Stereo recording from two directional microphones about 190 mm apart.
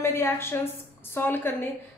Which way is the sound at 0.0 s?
15° left (ahead or behind).